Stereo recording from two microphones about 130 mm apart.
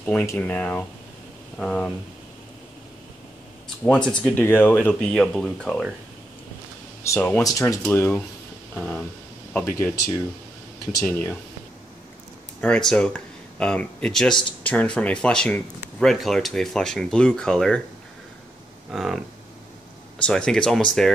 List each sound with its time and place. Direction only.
0.0 s speech: 10° left (ahead or behind)
3.8 s speech: 5° left (ahead or behind)
5.1 s speech: 5° left (ahead or behind)
7.0 s speech: 15° left (ahead or behind)
7.4 s speech: 25° left (ahead or behind)
11.1 s speech: 15° left (ahead or behind)
12.6 s speech: 10° left (ahead or behind)
18.9 s speech: 5° right (ahead or behind)
20.2 s speech: 5° left (ahead or behind)